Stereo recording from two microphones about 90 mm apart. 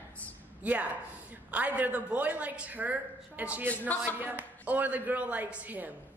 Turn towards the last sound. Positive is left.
turn(degrees=-20)  # may be behind; listen again after turning